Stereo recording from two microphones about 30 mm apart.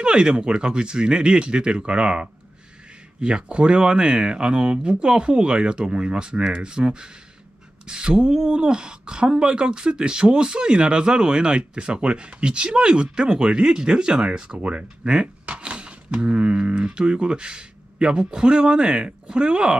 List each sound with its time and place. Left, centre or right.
0.0 s speech: right
8.4 s speech: right
14.6 s speech: right